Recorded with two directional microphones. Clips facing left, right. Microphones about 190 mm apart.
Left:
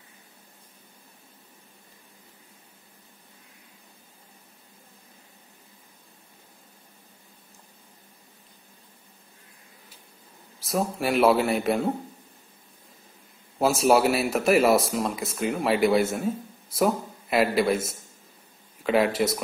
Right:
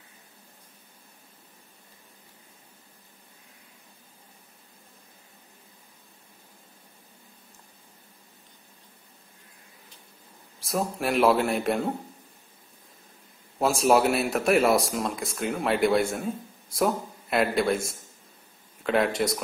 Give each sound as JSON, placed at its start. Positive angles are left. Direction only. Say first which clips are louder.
{"t": 10.6, "sound": "speech", "louder": "left 2 dB", "side_deg": 0}
{"t": 13.6, "sound": "speech", "louder": "left 1 dB", "side_deg": 0}